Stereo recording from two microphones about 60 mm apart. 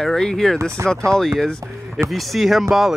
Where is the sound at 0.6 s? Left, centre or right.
Right.